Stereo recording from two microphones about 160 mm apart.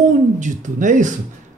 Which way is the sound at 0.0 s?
50° right (ahead or behind).